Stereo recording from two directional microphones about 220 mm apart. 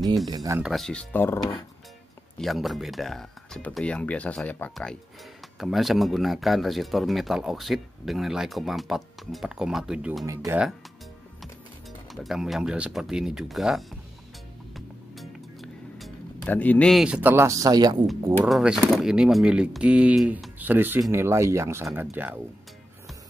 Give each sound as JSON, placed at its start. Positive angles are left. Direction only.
{"t": 0.3, "sound": "speech", "side_deg": -15}
{"t": 0.6, "sound": "speech", "side_deg": 0}
{"t": 12.1, "sound": "speech", "side_deg": 0}
{"t": 14.7, "sound": "music", "side_deg": 0}
{"t": 18.5, "sound": "speech", "side_deg": 0}